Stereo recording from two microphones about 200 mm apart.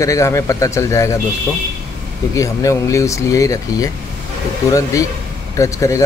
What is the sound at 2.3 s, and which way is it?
Speech, 15° left (ahead or behind).